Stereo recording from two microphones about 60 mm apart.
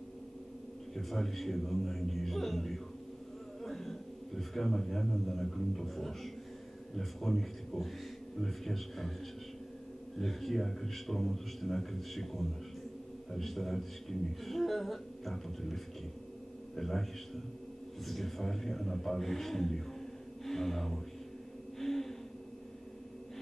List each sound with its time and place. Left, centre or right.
0.9 s a man's voice: centre
10.2 s a man's voice: centre
21.7 s a sound: centre